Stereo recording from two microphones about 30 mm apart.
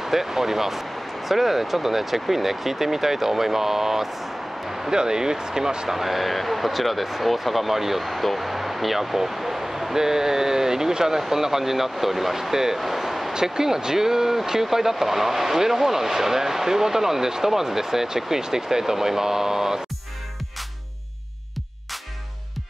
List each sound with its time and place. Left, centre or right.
0.0 s speech: centre
4.8 s speech: right
5.9 s speech: centre
8.0 s speech: centre
13.3 s speech: right